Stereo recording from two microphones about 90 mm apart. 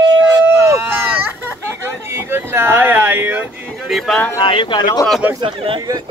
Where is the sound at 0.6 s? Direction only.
30° right (ahead or behind).